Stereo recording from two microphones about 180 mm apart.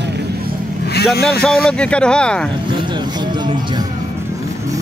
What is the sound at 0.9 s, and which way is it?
Speech, 65° left (ahead or behind).